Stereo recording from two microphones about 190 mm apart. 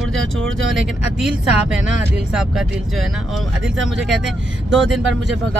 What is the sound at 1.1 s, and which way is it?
Speech, 5° right (ahead or behind).